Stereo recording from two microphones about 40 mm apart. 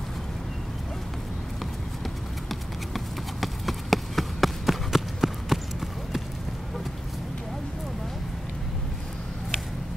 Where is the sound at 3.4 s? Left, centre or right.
Centre.